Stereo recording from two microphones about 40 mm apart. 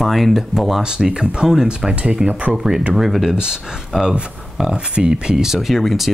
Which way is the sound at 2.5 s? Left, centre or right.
Centre.